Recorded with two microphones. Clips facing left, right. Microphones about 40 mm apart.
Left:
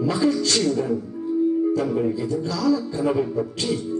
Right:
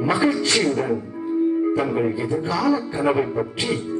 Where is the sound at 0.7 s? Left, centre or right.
Right.